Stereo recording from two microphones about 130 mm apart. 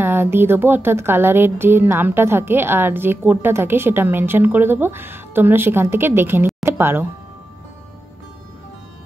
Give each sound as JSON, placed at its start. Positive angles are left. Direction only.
{"t": 0.0, "sound": "speech", "side_deg": -15}